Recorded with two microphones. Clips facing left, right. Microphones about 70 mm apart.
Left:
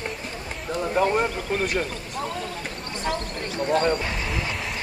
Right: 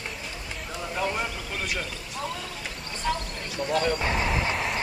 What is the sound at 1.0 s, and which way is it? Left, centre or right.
Speech, left.